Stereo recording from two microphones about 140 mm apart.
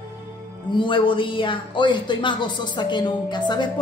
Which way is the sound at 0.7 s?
35° left (ahead or behind).